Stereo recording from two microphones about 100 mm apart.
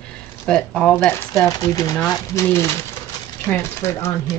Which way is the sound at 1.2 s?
30° left (ahead or behind).